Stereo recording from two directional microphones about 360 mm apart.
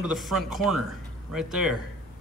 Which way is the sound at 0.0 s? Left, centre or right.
Centre.